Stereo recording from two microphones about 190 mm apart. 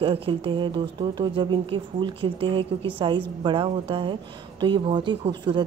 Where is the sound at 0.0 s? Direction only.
30° right (ahead or behind).